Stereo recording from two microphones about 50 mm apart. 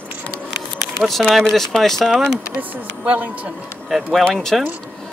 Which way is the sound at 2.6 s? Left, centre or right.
Right.